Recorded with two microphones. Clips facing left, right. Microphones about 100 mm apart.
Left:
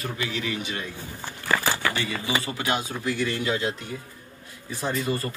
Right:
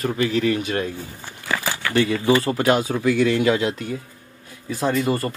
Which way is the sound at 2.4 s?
40° right (ahead or behind).